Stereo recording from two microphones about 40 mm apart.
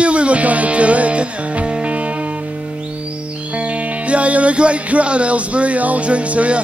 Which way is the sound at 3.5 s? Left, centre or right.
Right.